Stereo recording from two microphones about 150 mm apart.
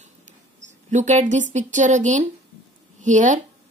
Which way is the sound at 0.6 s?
55° right (ahead or behind).